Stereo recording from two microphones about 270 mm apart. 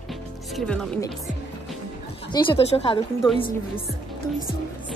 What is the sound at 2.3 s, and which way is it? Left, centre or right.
Speech, centre.